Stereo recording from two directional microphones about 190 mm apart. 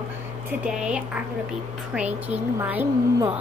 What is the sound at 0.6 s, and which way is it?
A woman's voice, 5° right (ahead or behind).